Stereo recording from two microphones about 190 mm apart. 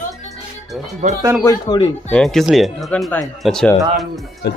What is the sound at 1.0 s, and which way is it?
Speech, 45° right (ahead or behind).